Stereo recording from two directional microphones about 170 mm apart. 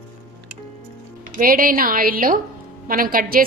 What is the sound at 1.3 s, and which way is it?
A woman's voice, 55° right (ahead or behind).